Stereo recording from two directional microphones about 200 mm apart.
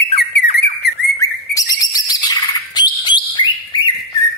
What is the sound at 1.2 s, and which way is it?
Bird, 15° left (ahead or behind).